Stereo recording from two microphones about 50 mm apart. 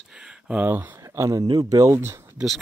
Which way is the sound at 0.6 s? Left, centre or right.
Right.